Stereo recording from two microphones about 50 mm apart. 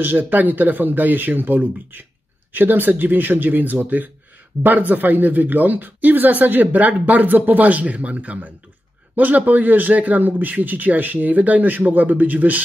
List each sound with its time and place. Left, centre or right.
0.0 s speech: right